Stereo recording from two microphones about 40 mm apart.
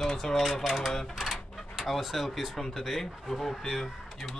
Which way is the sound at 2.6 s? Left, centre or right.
Centre.